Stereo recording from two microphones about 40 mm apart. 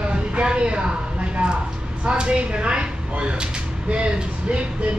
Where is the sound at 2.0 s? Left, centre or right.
Right.